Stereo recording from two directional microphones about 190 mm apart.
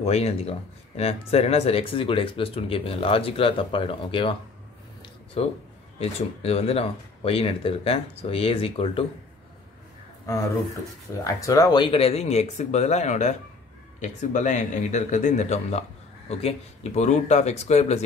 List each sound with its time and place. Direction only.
0.0 s speech: 35° left (ahead or behind)
5.0 s a sound: 30° left (ahead or behind)
5.9 s speech: 35° left (ahead or behind)
11.2 s speech: 15° left (ahead or behind); by 18.0 s 35° left (ahead or behind)